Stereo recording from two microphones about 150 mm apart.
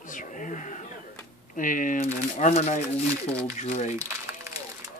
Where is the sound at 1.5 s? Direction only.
60° left (ahead or behind).